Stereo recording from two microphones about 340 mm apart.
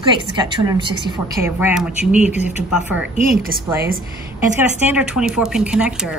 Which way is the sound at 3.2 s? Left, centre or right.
Right.